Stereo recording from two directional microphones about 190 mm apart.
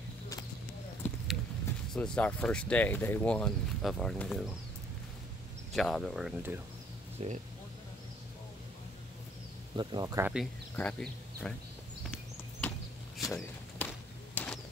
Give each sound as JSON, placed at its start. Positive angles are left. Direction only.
{"t": 1.0, "sound": "a sound", "side_deg": 0}
{"t": 2.0, "sound": "speech", "side_deg": 5}
{"t": 5.7, "sound": "speech", "side_deg": 0}
{"t": 7.2, "sound": "speech", "side_deg": -40}
{"t": 9.8, "sound": "speech", "side_deg": -20}
{"t": 10.3, "sound": "speech", "side_deg": 5}
{"t": 12.1, "sound": "chop", "side_deg": 5}
{"t": 13.2, "sound": "a sound", "side_deg": 10}